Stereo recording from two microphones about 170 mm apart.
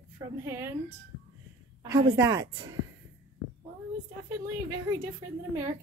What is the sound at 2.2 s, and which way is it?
Speech, 20° right (ahead or behind).